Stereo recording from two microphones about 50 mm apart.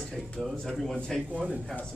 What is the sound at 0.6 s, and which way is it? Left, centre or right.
Speech, centre.